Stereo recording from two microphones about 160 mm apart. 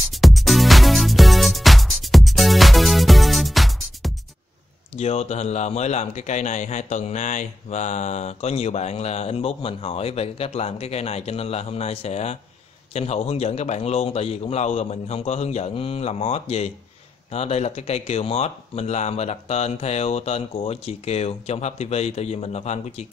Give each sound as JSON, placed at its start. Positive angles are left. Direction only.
{"t": 0.1, "sound": "music", "side_deg": 0}
{"t": 4.9, "sound": "a man's voice", "side_deg": 45}